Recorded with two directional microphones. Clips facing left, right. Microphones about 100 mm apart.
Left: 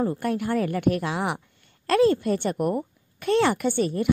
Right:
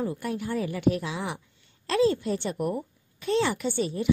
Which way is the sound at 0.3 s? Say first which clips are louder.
Left 5 dB; 60° left (ahead or behind).